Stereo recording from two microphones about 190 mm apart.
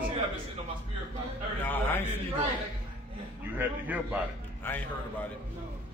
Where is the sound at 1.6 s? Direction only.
10° left (ahead or behind).